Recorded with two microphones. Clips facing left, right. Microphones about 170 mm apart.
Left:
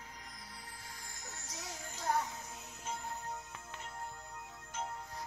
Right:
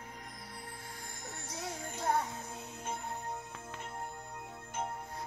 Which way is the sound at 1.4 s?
25° right (ahead or behind).